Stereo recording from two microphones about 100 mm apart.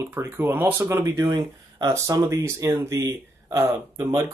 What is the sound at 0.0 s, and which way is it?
Speech, 25° right (ahead or behind).